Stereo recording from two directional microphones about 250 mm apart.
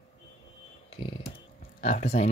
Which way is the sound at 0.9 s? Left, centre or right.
Left.